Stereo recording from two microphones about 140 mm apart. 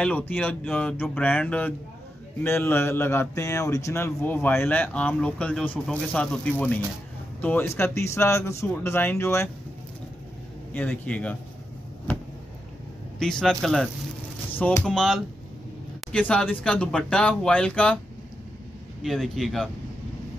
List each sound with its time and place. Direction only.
0.0 s a man's voice: 10° left (ahead or behind)
10.7 s a man's voice: 10° left (ahead or behind)
13.2 s a man's voice: 5° left (ahead or behind)
14.9 s a man's voice: centre (ahead or behind)
19.0 s a man's voice: centre (ahead or behind)